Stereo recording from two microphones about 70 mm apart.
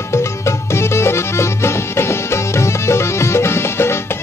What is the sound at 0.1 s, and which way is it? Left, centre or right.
Music, left.